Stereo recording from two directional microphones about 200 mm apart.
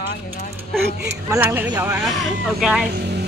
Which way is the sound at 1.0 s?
15° right (ahead or behind).